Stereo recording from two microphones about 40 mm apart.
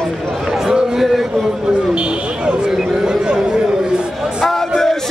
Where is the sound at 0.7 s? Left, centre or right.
Centre.